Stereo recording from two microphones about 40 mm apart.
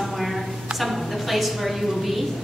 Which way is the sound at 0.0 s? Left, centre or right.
Centre.